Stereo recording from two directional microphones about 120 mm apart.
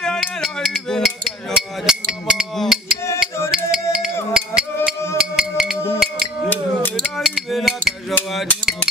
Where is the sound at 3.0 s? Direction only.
25° left (ahead or behind).